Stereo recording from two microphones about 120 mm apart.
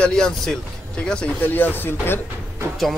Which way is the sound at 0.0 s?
5° left (ahead or behind).